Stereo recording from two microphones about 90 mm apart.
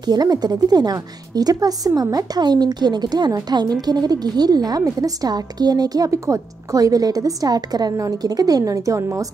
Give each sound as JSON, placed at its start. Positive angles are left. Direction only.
{"t": 0.0, "sound": "a woman's voice", "side_deg": -50}